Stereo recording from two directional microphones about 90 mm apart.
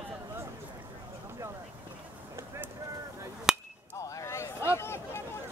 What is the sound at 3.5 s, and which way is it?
Chop, 5° right (ahead or behind).